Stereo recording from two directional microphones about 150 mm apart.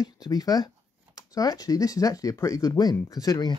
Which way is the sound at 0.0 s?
25° left (ahead or behind).